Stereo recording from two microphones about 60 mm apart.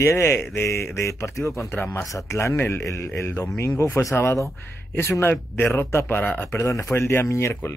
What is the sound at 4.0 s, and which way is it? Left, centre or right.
Speech, left.